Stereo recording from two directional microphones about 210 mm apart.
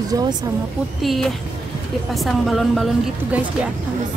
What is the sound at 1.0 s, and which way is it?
A woman's voice, centre (ahead or behind).